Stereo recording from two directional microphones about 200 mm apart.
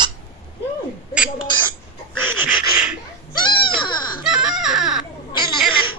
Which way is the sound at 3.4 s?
25° left (ahead or behind).